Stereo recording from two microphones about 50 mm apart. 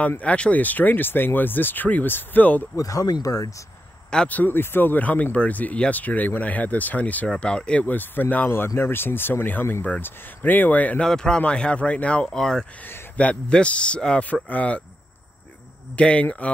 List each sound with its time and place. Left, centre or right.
0.2 s speech: left
4.3 s speech: left
7.2 s speech: centre
7.8 s speech: left
8.5 s speech: left
11.0 s speech: centre
12.4 s speech: centre
13.1 s speech: left
14.2 s speech: left
16.0 s speech: left